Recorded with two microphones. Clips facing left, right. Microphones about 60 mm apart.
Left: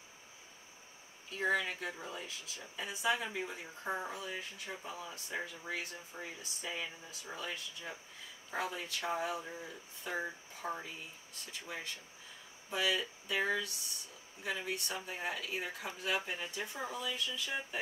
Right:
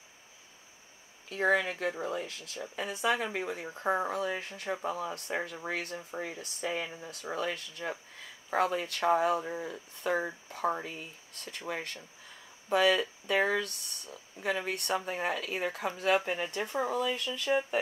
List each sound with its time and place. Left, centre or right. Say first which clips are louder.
1.3 s speech: right 6 dB; right